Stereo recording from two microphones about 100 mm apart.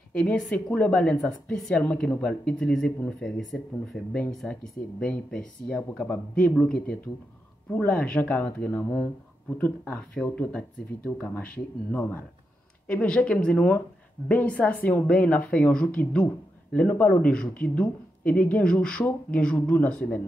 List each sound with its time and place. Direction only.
0.1 s a woman's voice: 10° left (ahead or behind)
1.8 s a woman's voice: 15° left (ahead or behind)